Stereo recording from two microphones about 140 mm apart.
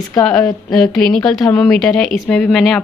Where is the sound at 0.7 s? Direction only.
5° left (ahead or behind).